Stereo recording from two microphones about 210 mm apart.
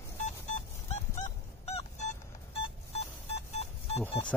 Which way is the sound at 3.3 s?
30° left (ahead or behind).